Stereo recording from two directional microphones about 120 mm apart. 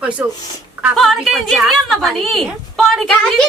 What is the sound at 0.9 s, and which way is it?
A woman's voice, centre (ahead or behind).